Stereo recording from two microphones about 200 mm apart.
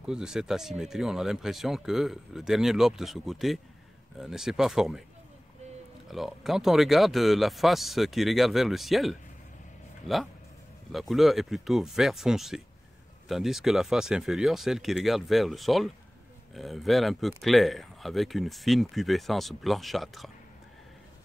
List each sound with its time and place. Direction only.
0.0 s speech: 5° right (ahead or behind)
6.0 s speech: centre (ahead or behind)